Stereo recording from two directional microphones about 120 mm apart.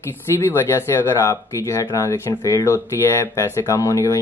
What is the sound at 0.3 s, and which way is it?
Speech, 20° left (ahead or behind).